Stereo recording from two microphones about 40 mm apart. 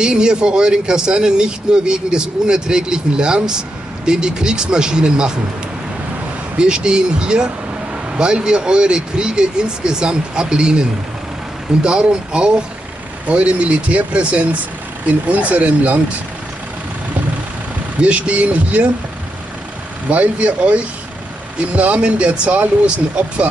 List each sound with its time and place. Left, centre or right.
0.0 s speech: right
6.6 s speech: right
18.0 s speech: right
20.1 s speech: right